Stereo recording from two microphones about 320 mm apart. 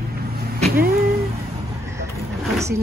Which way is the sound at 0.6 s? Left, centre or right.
Right.